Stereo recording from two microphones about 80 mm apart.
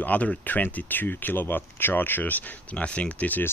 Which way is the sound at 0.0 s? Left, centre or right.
Centre.